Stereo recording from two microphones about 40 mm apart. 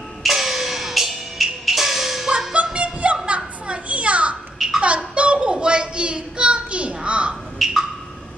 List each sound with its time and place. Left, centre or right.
0.2 s music: centre
2.5 s a sound: right
7.5 s music: centre